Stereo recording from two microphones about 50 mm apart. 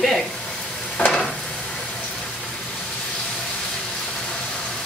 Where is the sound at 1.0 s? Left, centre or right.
Left.